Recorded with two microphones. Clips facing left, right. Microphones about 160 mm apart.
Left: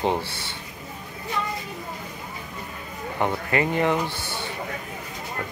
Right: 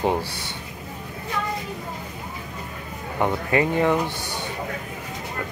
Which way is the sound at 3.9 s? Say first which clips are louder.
Right 2 dB; 15° right (ahead or behind).